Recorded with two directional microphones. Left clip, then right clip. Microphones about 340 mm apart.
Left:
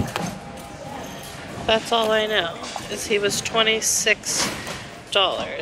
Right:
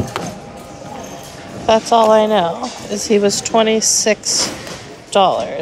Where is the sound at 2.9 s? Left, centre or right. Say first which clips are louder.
Right 7 dB; centre.